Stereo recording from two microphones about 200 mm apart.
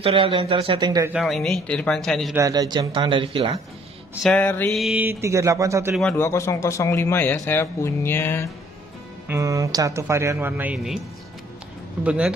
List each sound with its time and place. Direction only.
0.0 s speech: 25° right (ahead or behind)
1.1 s speech: centre (ahead or behind)
2.3 s speech: 15° right (ahead or behind)
4.1 s speech: 5° left (ahead or behind); by 5.9 s 15° right (ahead or behind)
5.9 s a man's voice: 10° left (ahead or behind)
9.3 s speech: 15° right (ahead or behind)
12.0 s speech: 5° right (ahead or behind)